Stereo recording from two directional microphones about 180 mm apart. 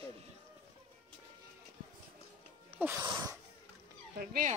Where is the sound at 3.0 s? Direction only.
20° right (ahead or behind).